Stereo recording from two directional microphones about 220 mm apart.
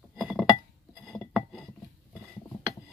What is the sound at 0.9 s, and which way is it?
Glass, 5° left (ahead or behind).